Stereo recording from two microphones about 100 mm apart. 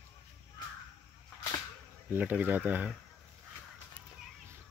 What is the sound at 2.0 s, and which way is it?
Speech, 20° right (ahead or behind).